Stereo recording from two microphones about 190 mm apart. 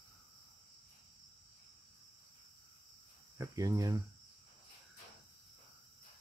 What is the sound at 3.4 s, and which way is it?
Speech, 20° right (ahead or behind).